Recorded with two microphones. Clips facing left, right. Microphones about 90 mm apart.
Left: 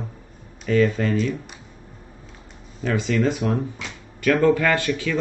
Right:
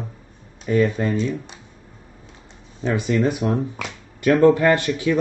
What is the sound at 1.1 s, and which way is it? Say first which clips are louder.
Speech: even; 30° right (ahead or behind).